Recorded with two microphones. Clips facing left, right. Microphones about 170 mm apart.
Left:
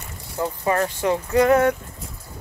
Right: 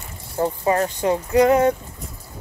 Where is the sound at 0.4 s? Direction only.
25° right (ahead or behind).